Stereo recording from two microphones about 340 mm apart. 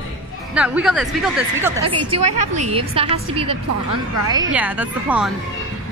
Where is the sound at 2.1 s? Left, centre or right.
Centre.